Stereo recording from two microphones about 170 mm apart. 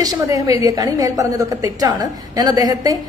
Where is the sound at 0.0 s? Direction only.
20° right (ahead or behind).